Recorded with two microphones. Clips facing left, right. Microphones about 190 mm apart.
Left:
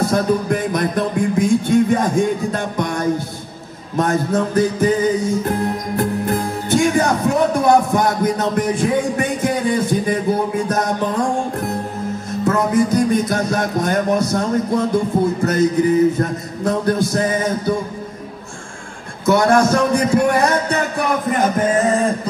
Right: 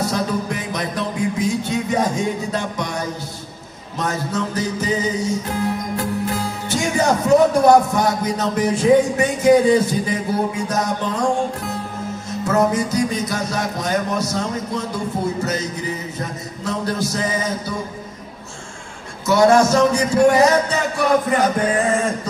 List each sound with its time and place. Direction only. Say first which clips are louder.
0.0 s music: left 5 dB; 55° left (ahead or behind)
19.2 s music: even; 55° left (ahead or behind)
21.8 s music: left 3 dB; 35° left (ahead or behind)